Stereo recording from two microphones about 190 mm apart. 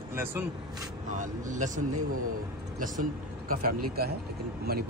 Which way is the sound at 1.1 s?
40° right (ahead or behind).